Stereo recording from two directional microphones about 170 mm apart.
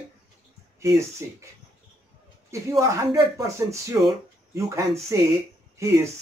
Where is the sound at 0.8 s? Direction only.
15° right (ahead or behind).